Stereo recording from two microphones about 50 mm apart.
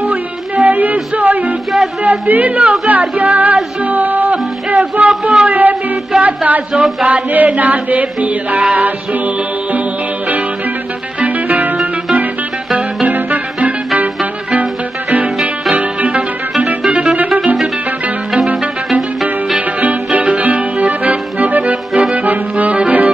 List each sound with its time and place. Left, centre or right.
0.0 s music: right
2.0 s speech: right
3.0 s chant: right
6.7 s a sound: centre
7.1 s chant: right
11.1 s music: right
19.8 s accordion: right